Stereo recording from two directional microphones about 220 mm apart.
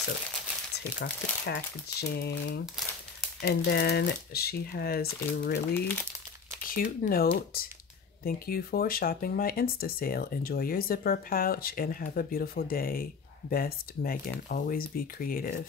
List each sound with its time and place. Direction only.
1.0 s speech: 45° left (ahead or behind)
6.6 s speech: 40° left (ahead or behind)